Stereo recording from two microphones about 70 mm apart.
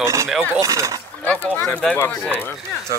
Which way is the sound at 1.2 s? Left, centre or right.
Left.